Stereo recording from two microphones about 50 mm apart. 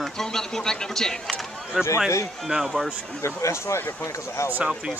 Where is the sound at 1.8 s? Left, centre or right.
Centre.